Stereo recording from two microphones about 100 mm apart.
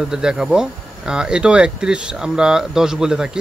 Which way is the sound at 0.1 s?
5° right (ahead or behind).